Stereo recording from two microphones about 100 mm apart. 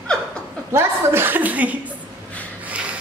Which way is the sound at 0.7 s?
25° right (ahead or behind).